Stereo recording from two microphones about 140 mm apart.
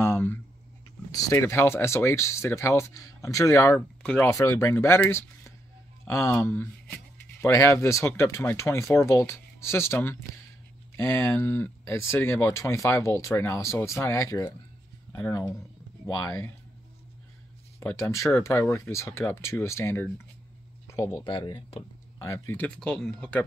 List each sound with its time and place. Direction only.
0.0 s a sound: 15° left (ahead or behind)
1.1 s speech: 20° left (ahead or behind)
4.0 s speech: 10° left (ahead or behind)
4.3 s speech: 20° left (ahead or behind)
17.7 s speech: 20° left (ahead or behind)
20.8 s a sound: 20° left (ahead or behind)
21.2 s speech: 35° left (ahead or behind)
22.2 s speech: 20° left (ahead or behind)
22.8 s speech: 5° left (ahead or behind)